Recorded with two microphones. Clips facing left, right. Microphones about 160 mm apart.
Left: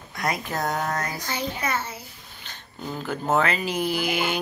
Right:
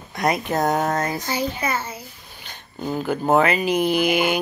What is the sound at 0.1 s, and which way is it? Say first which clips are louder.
Speech: right 6 dB; 20° right (ahead or behind).